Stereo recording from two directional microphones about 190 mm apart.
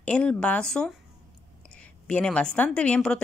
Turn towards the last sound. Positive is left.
turn(degrees=5)  # may be behind; listen again after turning